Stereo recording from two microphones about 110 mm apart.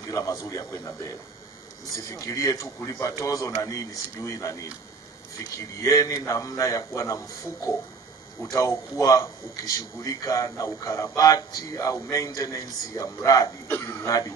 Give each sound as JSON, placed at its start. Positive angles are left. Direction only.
{"t": 0.1, "sound": "a man's voice", "side_deg": 30}
{"t": 5.8, "sound": "a man's voice", "side_deg": 30}
{"t": 8.4, "sound": "a man's voice", "side_deg": 30}